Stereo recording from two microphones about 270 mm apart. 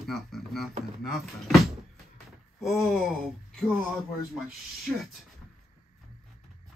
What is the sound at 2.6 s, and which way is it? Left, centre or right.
Speech, centre.